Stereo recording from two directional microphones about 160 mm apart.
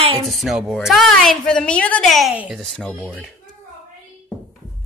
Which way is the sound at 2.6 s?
5° left (ahead or behind).